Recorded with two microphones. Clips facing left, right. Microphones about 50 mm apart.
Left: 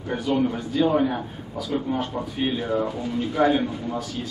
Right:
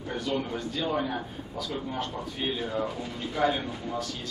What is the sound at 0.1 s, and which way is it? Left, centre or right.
A man's voice, centre.